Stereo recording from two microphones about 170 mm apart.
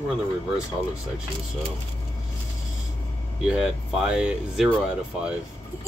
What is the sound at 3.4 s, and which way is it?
A woman's voice, 5° right (ahead or behind).